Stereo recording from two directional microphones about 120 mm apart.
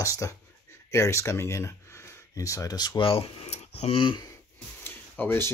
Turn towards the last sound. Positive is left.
turn(degrees=15)  # may be behind; listen again after turning